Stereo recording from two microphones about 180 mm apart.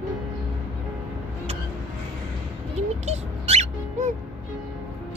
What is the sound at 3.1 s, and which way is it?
Music, 35° right (ahead or behind).